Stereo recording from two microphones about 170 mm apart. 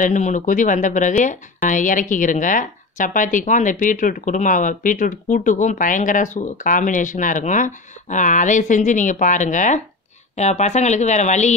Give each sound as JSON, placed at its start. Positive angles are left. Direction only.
{"t": 0.0, "sound": "speech", "side_deg": 45}